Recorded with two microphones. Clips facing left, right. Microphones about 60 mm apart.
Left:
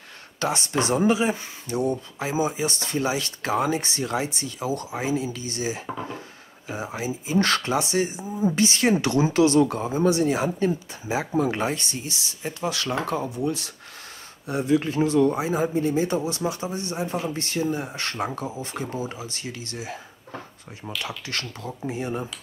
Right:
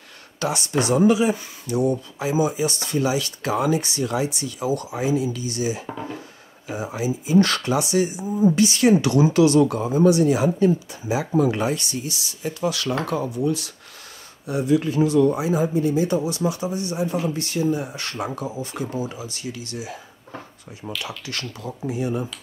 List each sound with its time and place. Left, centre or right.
0.4 s speech: left
5.9 s speech: centre
6.8 s speech: left
21.3 s speech: left